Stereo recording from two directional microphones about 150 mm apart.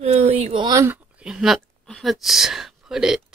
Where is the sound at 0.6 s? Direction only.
25° right (ahead or behind).